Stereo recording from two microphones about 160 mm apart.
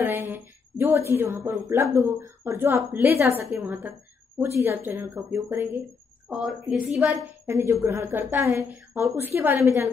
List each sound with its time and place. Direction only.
0.0 s a woman's voice: 15° right (ahead or behind)
6.2 s a woman's voice: 5° right (ahead or behind)
7.4 s a woman's voice: 15° right (ahead or behind)